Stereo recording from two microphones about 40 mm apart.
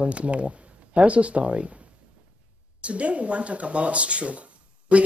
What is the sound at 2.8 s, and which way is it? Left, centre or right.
Speech, right.